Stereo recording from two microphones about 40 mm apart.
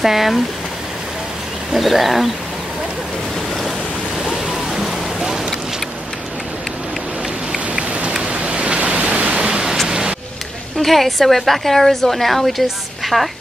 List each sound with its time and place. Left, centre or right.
0.0 s speech: centre
1.7 s a woman's voice: centre
4.5 s music: centre
7.5 s rain: right
8.2 s pink noise: right
9.5 s pink noise: centre
9.8 s a sound: centre
10.8 s a woman's voice: centre